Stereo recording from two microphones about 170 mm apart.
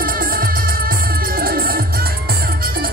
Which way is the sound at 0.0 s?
60° right (ahead or behind).